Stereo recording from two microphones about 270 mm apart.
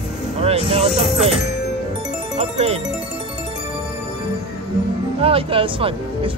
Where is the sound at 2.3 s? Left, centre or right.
Right.